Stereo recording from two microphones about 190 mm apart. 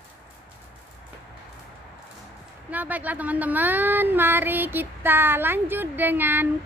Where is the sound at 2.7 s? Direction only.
10° right (ahead or behind).